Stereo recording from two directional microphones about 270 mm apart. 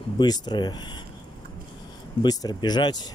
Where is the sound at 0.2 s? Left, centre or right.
Centre.